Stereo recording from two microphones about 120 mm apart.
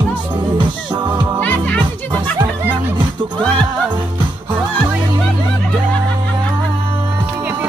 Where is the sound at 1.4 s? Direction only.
15° left (ahead or behind).